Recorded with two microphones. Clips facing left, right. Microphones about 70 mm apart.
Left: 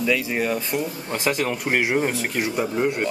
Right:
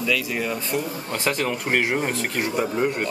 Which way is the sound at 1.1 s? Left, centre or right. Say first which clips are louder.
Left 1 dB; centre.